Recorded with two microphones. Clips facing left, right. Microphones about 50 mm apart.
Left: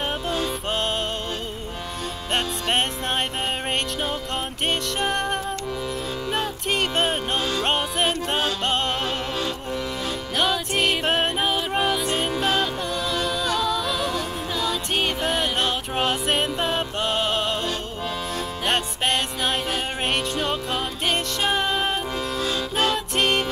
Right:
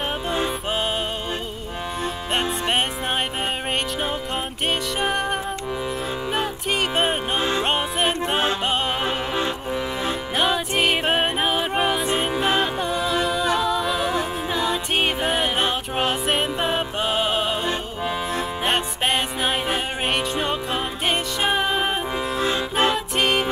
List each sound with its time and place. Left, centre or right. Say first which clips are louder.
4.6 s music: right 1 dB; centre
7.3 s music: right 2 dB; right
7.6 s music: right 1 dB; centre
10.3 s music: right 1 dB; centre
15.0 s music: right 1 dB; centre
22.4 s music: right 3 dB; right
23.1 s music: left 1 dB; centre